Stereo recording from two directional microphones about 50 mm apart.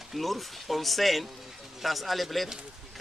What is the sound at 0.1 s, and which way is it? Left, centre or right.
Speech, centre.